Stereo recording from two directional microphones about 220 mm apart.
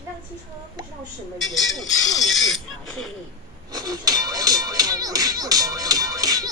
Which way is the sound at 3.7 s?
15° right (ahead or behind).